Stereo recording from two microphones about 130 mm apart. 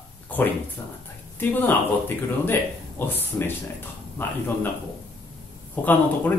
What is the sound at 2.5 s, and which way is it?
Speech, 15° left (ahead or behind).